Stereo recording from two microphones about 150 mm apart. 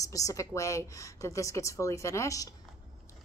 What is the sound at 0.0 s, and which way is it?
A woman's voice, 20° left (ahead or behind).